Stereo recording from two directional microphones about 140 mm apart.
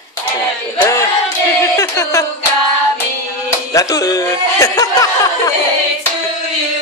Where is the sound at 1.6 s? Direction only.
20° left (ahead or behind).